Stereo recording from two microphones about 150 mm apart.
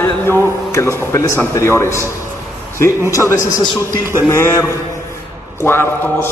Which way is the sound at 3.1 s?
20° left (ahead or behind).